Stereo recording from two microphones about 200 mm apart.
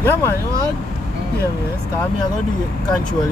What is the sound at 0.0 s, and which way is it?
Speech, 15° left (ahead or behind).